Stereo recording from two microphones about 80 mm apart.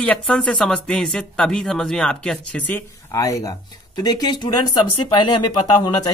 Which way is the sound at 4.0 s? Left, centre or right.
Left.